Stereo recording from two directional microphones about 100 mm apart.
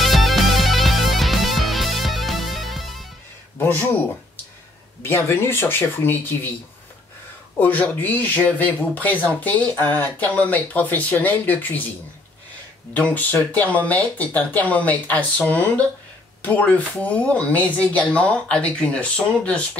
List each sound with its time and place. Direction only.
0.0 s music: centre (ahead or behind)
5.0 s speech: 25° left (ahead or behind)
7.5 s speech: 15° left (ahead or behind)
12.9 s speech: 15° left (ahead or behind)